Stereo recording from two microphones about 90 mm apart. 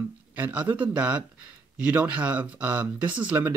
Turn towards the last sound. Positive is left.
turn(degrees=-20)  # may be behind; listen again after turning